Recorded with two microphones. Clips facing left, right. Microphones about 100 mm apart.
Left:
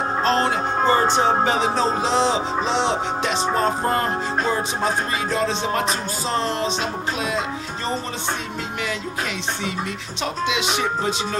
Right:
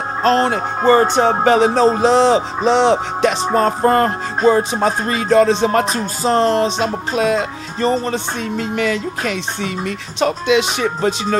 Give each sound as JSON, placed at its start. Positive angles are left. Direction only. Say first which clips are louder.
{"t": 0.2, "sound": "music", "louder": "right 7 dB", "side_deg": -50}
{"t": 5.6, "sound": "music", "louder": "right 7 dB", "side_deg": -50}